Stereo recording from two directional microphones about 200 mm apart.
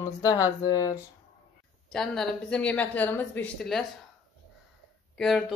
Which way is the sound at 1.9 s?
5° left (ahead or behind).